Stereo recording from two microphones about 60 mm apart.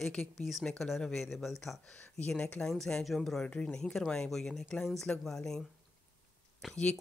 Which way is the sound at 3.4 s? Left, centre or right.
Left.